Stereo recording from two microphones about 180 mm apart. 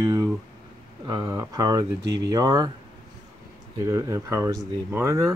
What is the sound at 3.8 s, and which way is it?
Speech, 15° right (ahead or behind).